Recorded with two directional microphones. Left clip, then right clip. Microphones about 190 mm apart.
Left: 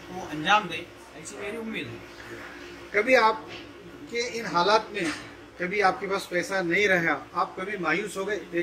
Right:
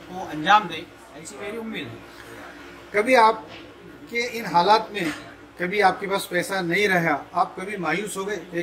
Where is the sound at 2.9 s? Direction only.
60° right (ahead or behind).